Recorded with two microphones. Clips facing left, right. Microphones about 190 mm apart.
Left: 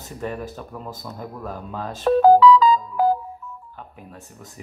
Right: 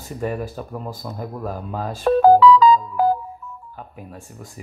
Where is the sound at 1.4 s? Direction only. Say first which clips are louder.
Right 4 dB; 10° right (ahead or behind).